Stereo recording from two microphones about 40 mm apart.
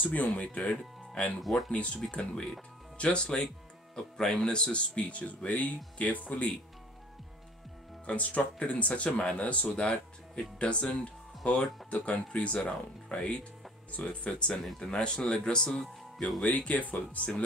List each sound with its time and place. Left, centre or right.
0.0 s speech: left
0.7 s speech: left
1.4 s speech: centre
1.7 s speech: left
8.1 s speech: left; by 11.7 s centre
11.9 s speech: left
14.8 s speech: centre
16.3 s speech: left